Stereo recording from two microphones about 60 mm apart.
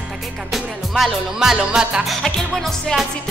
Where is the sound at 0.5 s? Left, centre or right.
Centre.